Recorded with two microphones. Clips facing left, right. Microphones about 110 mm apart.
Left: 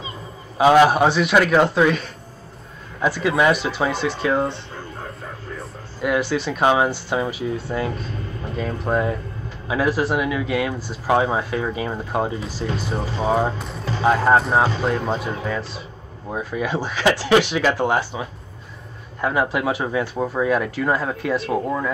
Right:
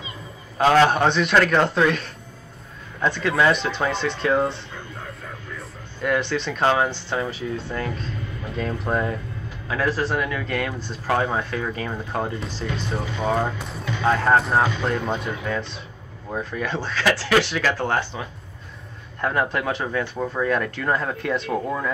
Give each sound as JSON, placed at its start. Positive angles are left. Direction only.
{"t": 0.6, "sound": "a man's voice", "side_deg": 10}
{"t": 5.6, "sound": "a man's voice", "side_deg": 5}
{"t": 13.0, "sound": "speech", "side_deg": 30}
{"t": 14.0, "sound": "speech", "side_deg": 15}
{"t": 14.3, "sound": "a man's voice", "side_deg": 0}
{"t": 14.6, "sound": "speech", "side_deg": 35}
{"t": 14.9, "sound": "a man's voice", "side_deg": 0}
{"t": 19.2, "sound": "speech", "side_deg": 5}